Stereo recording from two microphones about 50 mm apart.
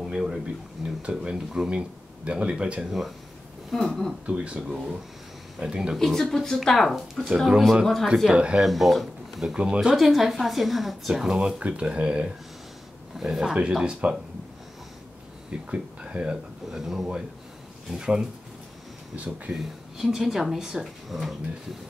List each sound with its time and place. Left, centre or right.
0.0 s speech: centre
3.7 s a woman's voice: centre
4.3 s speech: centre
5.9 s speech: centre
7.3 s speech: centre
7.8 s a woman's voice: centre
8.3 s speech: centre
8.5 s speech: centre
9.5 s speech: centre
9.9 s a woman's voice: centre; by 12.3 s right
13.1 s speech: centre
15.7 s speech: right
16.7 s speech: centre
19.5 s a woman's voice: centre